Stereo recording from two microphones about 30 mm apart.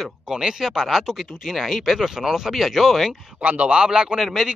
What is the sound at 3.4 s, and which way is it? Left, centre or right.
Speech, right.